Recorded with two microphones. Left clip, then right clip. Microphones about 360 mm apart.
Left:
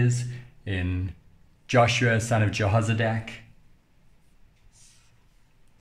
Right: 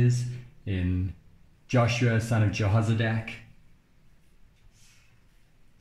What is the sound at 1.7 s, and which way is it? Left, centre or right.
Speech, left.